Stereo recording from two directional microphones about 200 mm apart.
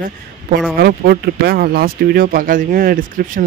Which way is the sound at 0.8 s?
50° right (ahead or behind).